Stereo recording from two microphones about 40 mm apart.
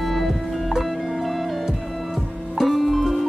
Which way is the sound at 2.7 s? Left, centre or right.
Centre.